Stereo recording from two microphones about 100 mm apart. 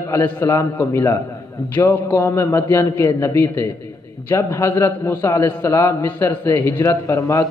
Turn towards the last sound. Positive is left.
turn(degrees=30)  # may be behind; listen again after turning